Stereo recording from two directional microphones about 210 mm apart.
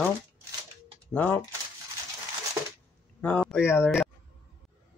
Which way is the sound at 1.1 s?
5° left (ahead or behind).